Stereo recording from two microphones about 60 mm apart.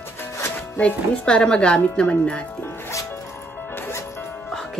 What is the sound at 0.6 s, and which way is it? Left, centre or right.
Music, left.